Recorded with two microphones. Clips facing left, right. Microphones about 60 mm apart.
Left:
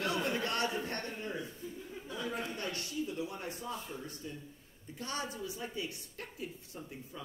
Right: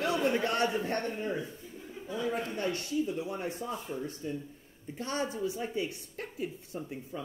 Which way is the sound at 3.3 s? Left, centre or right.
Right.